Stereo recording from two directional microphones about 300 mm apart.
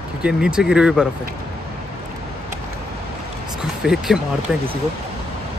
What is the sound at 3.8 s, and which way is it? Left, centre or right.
Speech, centre.